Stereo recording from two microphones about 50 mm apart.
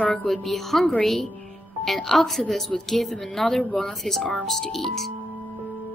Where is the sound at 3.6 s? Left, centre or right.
Left.